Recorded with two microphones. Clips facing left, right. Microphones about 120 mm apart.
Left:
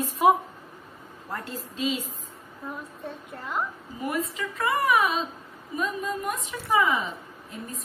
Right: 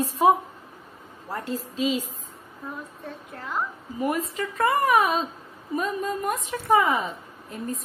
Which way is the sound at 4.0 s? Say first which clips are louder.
Right 3 dB; 45° right (ahead or behind).